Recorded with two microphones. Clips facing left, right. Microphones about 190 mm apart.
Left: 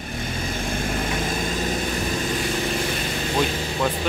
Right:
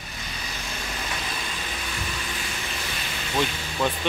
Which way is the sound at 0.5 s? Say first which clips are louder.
Left 9 dB; 50° left (ahead or behind).